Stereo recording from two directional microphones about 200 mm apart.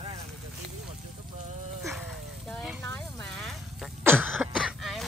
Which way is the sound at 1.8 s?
15° right (ahead or behind).